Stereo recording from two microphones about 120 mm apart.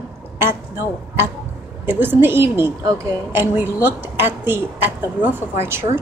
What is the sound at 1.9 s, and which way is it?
A woman's voice, 15° right (ahead or behind).